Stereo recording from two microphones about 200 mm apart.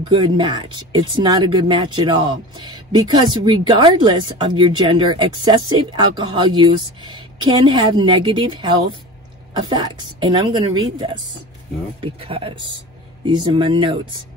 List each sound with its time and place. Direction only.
0.0 s speech: 20° right (ahead or behind)